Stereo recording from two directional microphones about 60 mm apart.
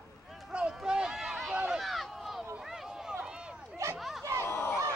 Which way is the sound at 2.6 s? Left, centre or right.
Centre.